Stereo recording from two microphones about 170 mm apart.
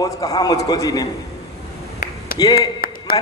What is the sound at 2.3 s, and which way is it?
Speech, 25° left (ahead or behind).